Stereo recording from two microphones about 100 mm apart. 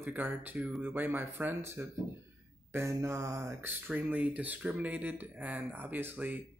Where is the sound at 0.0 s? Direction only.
20° right (ahead or behind).